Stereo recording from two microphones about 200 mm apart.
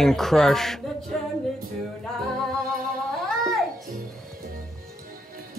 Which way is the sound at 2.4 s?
Centre (ahead or behind).